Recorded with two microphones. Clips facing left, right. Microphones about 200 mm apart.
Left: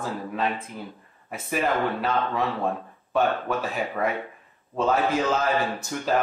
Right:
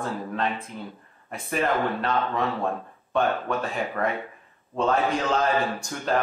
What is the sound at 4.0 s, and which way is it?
Speech, 5° left (ahead or behind).